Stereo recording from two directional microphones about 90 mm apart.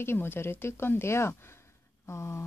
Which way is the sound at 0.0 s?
25° left (ahead or behind).